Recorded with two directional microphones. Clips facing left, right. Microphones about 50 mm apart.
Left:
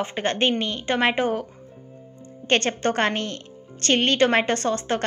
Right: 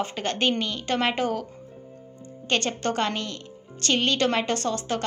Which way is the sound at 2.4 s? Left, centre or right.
Left.